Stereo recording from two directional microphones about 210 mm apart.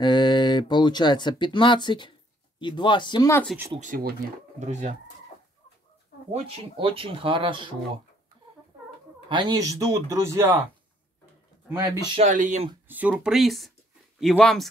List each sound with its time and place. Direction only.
0.0 s speech: 20° left (ahead or behind)
3.8 s speech: 40° right (ahead or behind)
6.3 s speech: 25° right (ahead or behind)
9.3 s speech: 20° right (ahead or behind)
11.7 s speech: 15° right (ahead or behind)
12.2 s speech: 35° right (ahead or behind)
12.8 s speech: 10° right (ahead or behind)